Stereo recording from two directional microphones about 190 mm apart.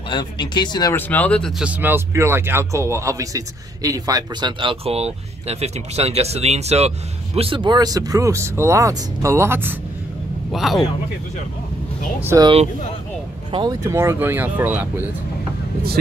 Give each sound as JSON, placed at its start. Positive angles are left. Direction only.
{"t": 0.1, "sound": "speech", "side_deg": 25}
{"t": 0.9, "sound": "speech", "side_deg": 10}
{"t": 1.6, "sound": "a man's voice", "side_deg": -10}
{"t": 10.5, "sound": "speech", "side_deg": 0}
{"t": 12.2, "sound": "speech", "side_deg": -10}
{"t": 13.5, "sound": "speech", "side_deg": -20}